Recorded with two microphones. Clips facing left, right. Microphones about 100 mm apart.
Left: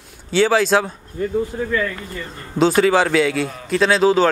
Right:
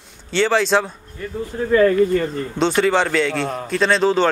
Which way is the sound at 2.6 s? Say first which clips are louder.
Left 3 dB; 5° left (ahead or behind).